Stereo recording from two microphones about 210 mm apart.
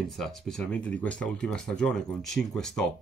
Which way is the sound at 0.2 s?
5° left (ahead or behind).